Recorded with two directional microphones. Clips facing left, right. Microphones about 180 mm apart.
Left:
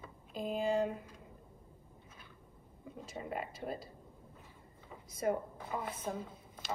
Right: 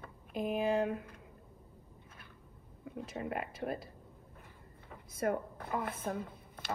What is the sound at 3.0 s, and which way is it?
A woman's voice, 55° right (ahead or behind).